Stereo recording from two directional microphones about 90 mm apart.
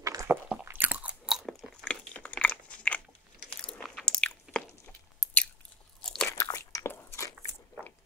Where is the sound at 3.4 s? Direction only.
15° left (ahead or behind).